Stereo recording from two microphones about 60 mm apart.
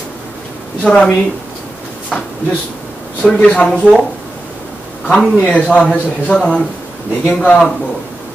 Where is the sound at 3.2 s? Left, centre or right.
Centre.